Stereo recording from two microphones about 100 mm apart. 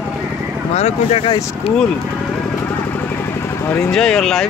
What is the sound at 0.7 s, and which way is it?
Speech, 90° left.